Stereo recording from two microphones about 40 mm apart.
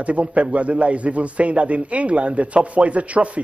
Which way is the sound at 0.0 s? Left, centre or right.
Right.